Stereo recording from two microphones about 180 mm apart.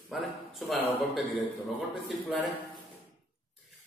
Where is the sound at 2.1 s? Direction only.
Centre (ahead or behind).